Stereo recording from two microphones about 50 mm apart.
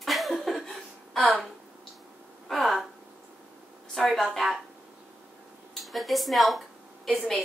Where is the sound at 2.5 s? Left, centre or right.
Centre.